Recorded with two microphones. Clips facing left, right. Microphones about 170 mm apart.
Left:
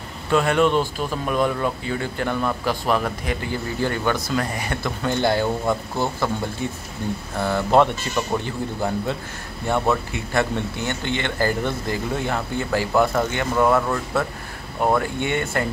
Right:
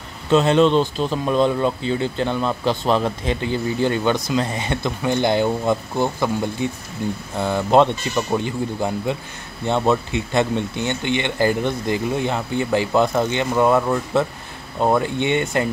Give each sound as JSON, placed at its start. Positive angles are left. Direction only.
{"t": 0.3, "sound": "speech", "side_deg": -20}